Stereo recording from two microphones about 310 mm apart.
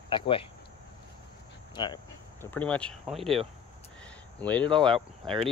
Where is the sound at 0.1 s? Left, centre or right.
Centre.